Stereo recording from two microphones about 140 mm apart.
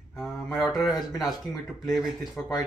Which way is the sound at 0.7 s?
30° left (ahead or behind).